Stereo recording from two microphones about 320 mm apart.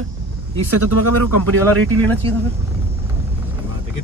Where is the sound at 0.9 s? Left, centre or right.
Right.